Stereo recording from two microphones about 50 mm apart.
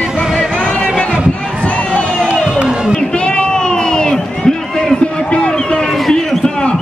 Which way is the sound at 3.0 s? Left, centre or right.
Centre.